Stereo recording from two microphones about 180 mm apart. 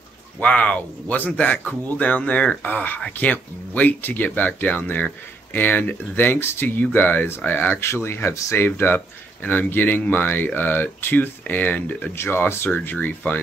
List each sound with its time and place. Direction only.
0.4 s speech: 5° left (ahead or behind)